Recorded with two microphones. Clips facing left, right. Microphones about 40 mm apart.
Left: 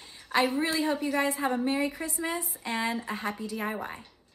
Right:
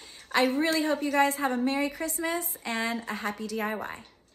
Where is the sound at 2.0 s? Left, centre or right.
Centre.